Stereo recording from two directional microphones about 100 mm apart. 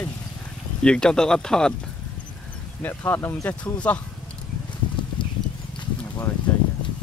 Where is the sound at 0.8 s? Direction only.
10° left (ahead or behind).